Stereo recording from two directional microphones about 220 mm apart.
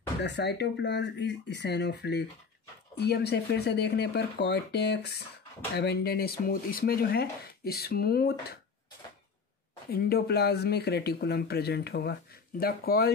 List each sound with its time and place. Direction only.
0.2 s speech: 50° left (ahead or behind)
9.8 s speech: 45° left (ahead or behind)